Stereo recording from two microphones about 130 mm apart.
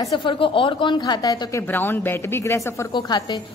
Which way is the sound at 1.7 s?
15° left (ahead or behind).